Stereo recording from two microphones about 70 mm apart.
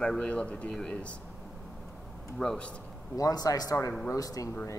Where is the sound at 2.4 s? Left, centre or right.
Centre.